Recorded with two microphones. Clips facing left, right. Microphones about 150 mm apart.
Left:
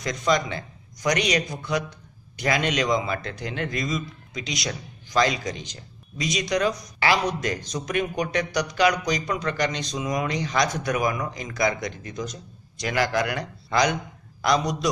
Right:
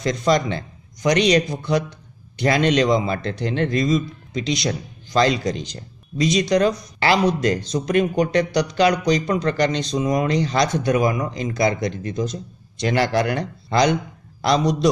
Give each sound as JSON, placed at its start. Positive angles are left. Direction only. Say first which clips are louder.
{"t": 0.0, "sound": "a man's voice", "louder": "right 5 dB", "side_deg": -30}